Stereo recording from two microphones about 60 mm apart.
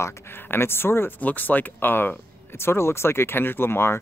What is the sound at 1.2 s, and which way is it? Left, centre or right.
Speech, left.